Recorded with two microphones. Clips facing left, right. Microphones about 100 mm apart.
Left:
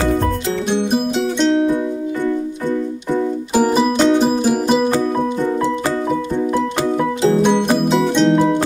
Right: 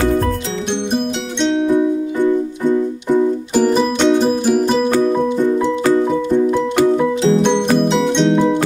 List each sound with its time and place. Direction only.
0.7 s music: 5° left (ahead or behind)
3.5 s music: 5° left (ahead or behind)
7.4 s music: 5° left (ahead or behind)